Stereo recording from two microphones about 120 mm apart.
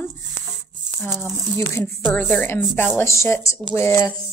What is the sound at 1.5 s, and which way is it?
A woman's voice, 20° left (ahead or behind).